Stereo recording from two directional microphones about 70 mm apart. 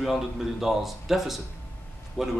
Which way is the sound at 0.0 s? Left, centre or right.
Centre.